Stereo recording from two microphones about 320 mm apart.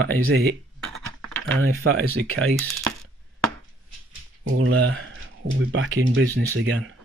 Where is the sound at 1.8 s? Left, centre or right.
Right.